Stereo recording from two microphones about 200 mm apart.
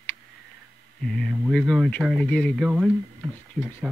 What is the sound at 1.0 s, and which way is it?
Speech, centre (ahead or behind).